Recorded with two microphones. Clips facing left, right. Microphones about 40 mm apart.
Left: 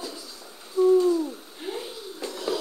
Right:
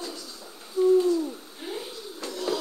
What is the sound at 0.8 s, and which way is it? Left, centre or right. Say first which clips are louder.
Hoot: left 1 dB; centre.